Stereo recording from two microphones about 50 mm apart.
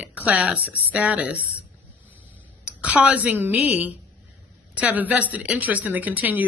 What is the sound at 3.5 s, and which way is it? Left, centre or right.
Speech, right.